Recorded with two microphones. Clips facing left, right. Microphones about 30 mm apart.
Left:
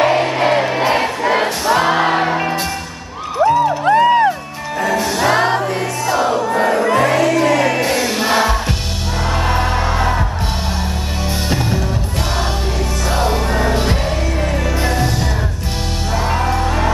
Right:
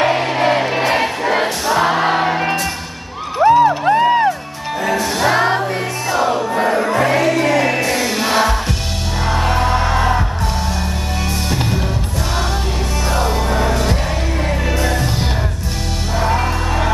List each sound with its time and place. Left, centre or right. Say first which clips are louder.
0.0 s music: left 1 dB; centre
1.8 s music: right 1 dB; centre
2.1 s music: even; centre
3.4 s music: right 4 dB; right
3.8 s music: left 1 dB; centre
6.0 s battle cry: left 1 dB; centre
7.0 s music: left 1 dB; centre
13.3 s music: even; centre
14.8 s music: left 2 dB; left